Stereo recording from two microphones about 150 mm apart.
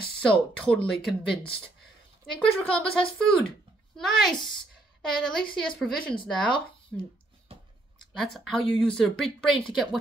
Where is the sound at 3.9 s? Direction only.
5° left (ahead or behind).